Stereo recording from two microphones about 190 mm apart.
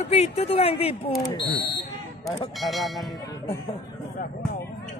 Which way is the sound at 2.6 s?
Centre (ahead or behind).